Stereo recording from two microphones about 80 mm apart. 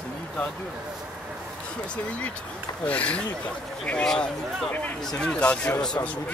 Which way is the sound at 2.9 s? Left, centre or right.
Centre.